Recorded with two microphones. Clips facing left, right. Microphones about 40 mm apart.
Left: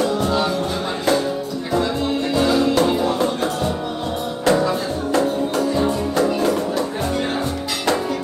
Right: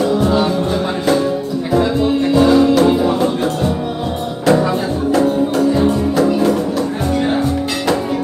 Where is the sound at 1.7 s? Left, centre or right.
Centre.